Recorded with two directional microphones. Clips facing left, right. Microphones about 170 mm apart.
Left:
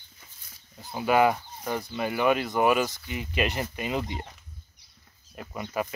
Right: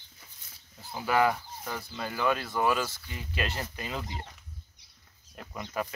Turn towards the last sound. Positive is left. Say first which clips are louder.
# left 3 dB
turn(degrees=10)  # may be behind; listen again after turning